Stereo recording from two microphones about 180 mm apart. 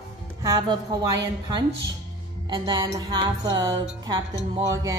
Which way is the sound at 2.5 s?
25° right (ahead or behind).